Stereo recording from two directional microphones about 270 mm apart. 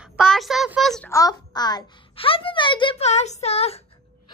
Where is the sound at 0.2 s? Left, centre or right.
Centre; by 3.8 s left.